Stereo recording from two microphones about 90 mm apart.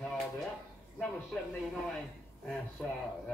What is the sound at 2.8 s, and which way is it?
Speech, 5° left (ahead or behind).